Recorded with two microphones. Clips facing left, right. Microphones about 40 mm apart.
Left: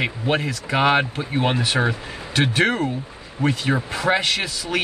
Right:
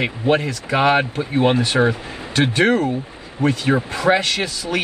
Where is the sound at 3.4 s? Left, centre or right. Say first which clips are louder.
Right 3 dB; right.